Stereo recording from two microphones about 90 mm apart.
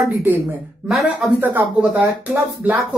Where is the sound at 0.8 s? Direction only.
Centre (ahead or behind).